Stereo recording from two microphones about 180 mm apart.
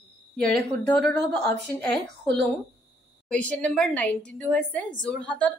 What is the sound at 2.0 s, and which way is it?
Speech, 70° right (ahead or behind).